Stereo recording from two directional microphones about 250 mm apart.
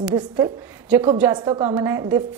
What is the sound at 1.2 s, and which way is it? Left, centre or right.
Speech, centre.